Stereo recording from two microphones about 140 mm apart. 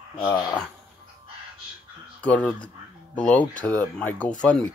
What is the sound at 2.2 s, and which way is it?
Speech, 10° left (ahead or behind).